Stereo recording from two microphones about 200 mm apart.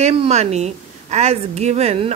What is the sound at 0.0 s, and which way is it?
A woman's voice, 30° right (ahead or behind).